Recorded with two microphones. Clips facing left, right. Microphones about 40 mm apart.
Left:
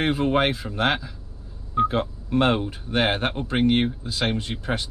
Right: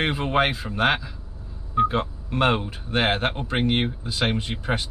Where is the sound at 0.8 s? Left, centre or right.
Centre.